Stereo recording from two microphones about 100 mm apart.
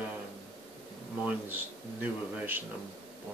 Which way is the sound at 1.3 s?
20° right (ahead or behind).